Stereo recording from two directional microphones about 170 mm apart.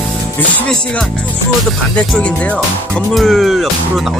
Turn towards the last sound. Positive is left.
turn(degrees=0)  # may be behind; listen again after turning